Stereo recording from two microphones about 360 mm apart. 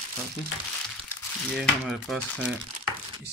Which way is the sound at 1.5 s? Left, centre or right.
Centre.